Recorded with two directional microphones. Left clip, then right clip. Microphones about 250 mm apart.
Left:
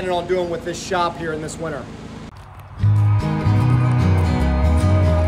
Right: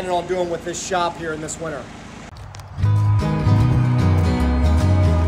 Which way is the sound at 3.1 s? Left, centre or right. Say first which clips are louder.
Right 1 dB; centre.